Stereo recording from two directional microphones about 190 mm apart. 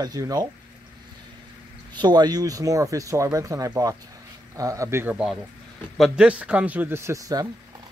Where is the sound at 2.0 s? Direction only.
20° right (ahead or behind).